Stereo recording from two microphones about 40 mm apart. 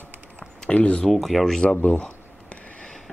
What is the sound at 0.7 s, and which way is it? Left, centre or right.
Speech, left.